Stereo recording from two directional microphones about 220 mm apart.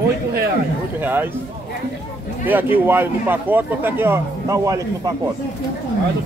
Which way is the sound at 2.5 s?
10° right (ahead or behind).